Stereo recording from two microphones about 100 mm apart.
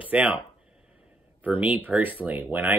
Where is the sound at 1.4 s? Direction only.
15° right (ahead or behind).